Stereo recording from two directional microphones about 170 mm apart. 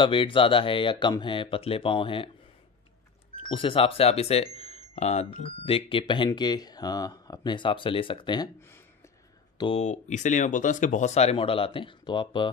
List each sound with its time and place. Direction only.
0.0 s speech: 30° left (ahead or behind)
3.3 s speech: 30° left (ahead or behind)
8.5 s speech: 15° left (ahead or behind)
9.6 s speech: 35° left (ahead or behind)